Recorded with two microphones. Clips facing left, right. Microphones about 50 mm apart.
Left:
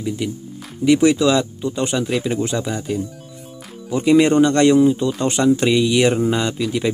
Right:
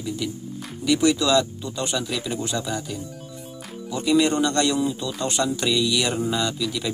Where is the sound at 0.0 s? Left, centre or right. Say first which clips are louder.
Left 5 dB; left.